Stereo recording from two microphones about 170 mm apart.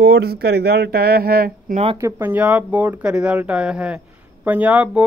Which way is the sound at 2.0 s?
15° right (ahead or behind).